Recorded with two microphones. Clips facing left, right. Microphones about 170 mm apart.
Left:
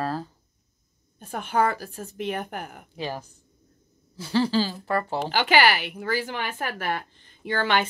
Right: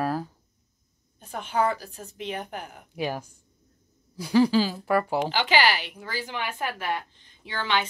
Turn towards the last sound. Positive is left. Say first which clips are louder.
# left 4 dB
turn(degrees=50)  # may be behind; listen again after turning